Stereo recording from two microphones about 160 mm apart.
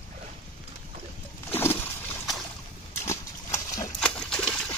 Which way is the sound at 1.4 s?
15° left (ahead or behind).